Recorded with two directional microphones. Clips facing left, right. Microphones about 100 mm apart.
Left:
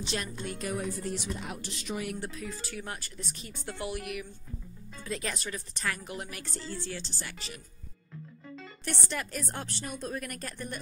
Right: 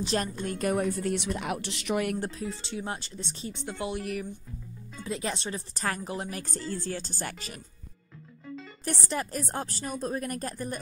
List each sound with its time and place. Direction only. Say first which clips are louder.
0.0 s a woman's voice: right 6 dB; 40° right (ahead or behind); by 2.1 s 65° right (ahead or behind)
2.1 s speech: right 5 dB; 35° right (ahead or behind)
4.0 s speech: right 4 dB; 35° right (ahead or behind)
5.0 s speech: right 3 dB; 25° right (ahead or behind); by 7.6 s 45° right (ahead or behind)
8.8 s speech: right 4 dB; 35° right (ahead or behind)